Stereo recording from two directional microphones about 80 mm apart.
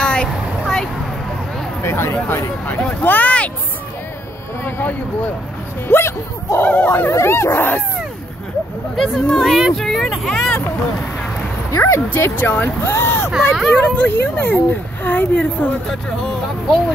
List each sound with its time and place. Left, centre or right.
0.0 s vehicle: centre
1.8 s speech: left
2.6 s speech: centre
4.6 s speech: left
7.1 s speech: left
8.9 s speech: centre
11.8 s speech: left
13.7 s speech: centre
15.9 s speech: centre